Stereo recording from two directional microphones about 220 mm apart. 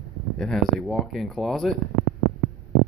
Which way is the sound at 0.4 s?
Centre (ahead or behind).